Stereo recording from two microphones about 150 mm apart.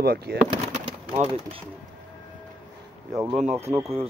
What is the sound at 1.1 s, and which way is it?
Speech, 40° right (ahead or behind).